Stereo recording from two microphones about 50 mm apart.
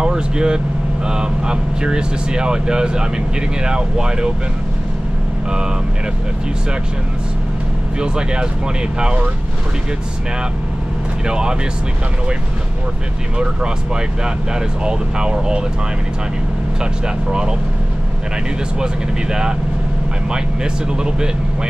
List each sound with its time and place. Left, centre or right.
0.0 s speech: centre
8.0 s speech: centre
11.2 s speech: centre
13.4 s speech: centre
17.3 s speech: centre
20.2 s speech: centre